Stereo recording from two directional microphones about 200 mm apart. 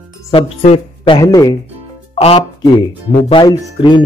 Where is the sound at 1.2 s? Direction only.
15° left (ahead or behind).